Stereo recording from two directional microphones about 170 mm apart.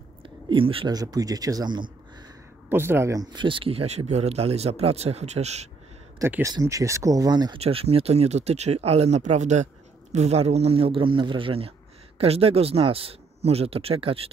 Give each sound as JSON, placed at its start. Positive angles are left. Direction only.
{"t": 0.2, "sound": "a man's voice", "side_deg": -30}
{"t": 2.7, "sound": "speech", "side_deg": -15}
{"t": 6.1, "sound": "speech", "side_deg": -15}
{"t": 7.6, "sound": "speech", "side_deg": -35}